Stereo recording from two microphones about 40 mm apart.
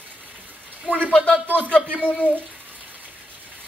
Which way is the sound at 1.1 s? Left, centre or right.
Left.